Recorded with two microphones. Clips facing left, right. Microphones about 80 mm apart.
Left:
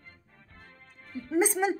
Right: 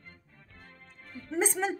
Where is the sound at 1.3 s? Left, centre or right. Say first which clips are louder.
Left 4 dB; centre.